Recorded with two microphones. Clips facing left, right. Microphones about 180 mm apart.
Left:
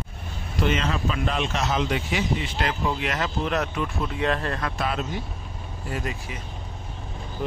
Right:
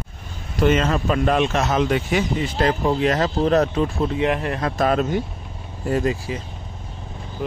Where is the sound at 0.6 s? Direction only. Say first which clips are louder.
Right 6 dB; 45° right (ahead or behind).